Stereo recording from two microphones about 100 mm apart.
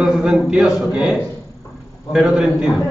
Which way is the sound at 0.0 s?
10° right (ahead or behind).